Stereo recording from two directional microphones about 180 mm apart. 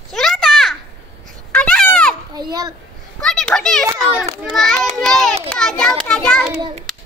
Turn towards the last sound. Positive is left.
turn(degrees=5)  # may be behind; listen again after turning